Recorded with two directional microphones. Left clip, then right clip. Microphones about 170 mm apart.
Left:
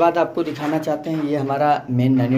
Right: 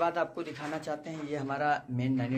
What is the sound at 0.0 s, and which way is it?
Speech, 5° left (ahead or behind).